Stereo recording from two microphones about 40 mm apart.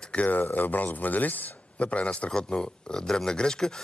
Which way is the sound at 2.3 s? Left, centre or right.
Left.